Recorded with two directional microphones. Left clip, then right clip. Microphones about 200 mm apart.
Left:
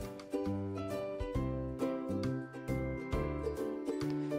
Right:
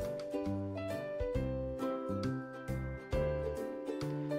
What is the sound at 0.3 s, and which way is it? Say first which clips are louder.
Music: left 1 dB; centre (ahead or behind).